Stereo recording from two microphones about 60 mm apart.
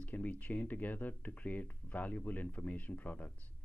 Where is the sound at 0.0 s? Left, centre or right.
Left.